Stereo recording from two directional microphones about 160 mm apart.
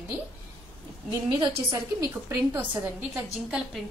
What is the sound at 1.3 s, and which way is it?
Speech, 25° right (ahead or behind).